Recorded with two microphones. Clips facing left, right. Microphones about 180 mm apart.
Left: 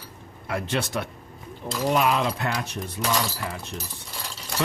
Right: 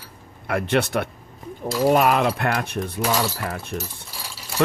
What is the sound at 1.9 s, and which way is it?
Speech, 55° right (ahead or behind).